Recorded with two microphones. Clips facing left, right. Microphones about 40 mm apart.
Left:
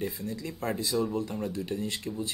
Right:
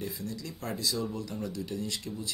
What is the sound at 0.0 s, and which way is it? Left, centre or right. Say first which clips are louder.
Speech: left 3 dB; left.